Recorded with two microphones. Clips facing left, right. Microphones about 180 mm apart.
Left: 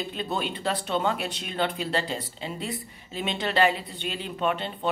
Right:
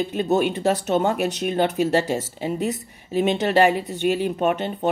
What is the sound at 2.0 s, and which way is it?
Speech, 75° right (ahead or behind).